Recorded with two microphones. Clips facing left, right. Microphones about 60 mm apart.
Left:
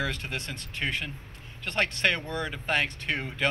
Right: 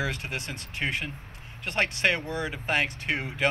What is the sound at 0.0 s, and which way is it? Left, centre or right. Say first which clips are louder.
Speech: right 1 dB; centre.